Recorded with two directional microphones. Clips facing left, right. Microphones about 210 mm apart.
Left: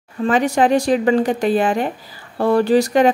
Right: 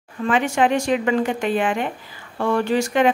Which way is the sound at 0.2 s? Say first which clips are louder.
Left 3 dB; 35° left (ahead or behind).